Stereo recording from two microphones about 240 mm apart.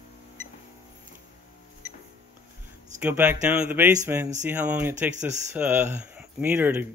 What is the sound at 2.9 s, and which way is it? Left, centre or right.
Speech, centre.